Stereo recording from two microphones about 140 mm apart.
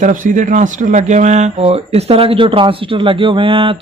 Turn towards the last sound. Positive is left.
turn(degrees=-40)  # may be behind; listen again after turning